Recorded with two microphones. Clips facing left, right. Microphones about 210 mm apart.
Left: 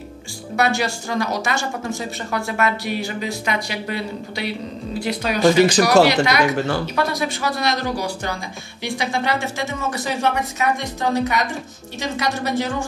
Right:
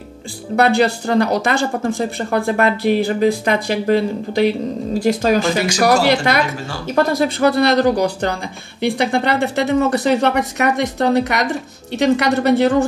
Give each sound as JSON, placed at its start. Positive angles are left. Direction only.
{"t": 0.6, "sound": "speech", "side_deg": -55}